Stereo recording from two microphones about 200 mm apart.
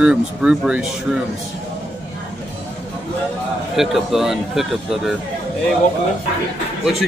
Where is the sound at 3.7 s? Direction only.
Centre (ahead or behind).